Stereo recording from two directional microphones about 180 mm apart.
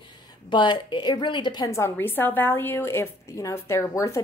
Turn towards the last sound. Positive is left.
turn(degrees=15)  # may be behind; listen again after turning